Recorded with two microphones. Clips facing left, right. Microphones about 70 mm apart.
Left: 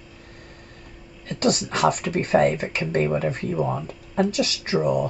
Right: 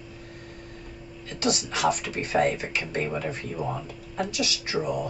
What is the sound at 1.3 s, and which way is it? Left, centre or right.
Speech, left.